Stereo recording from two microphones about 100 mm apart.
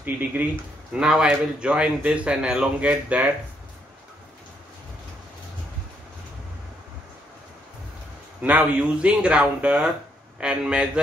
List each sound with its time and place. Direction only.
0.0 s speech: 15° right (ahead or behind)
8.4 s speech: 15° right (ahead or behind)